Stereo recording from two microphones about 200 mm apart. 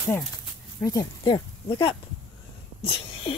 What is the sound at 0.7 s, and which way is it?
Speech, 15° left (ahead or behind).